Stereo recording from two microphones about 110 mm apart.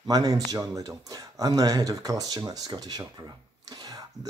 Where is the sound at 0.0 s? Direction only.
35° right (ahead or behind).